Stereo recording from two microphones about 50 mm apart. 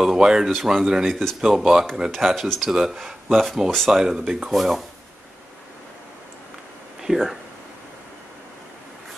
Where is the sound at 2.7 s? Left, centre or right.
Centre.